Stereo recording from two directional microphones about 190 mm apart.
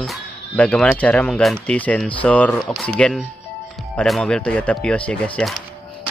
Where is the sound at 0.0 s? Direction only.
5° left (ahead or behind).